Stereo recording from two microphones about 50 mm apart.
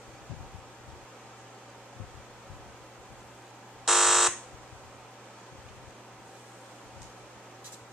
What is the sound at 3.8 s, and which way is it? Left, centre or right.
Alarm, centre.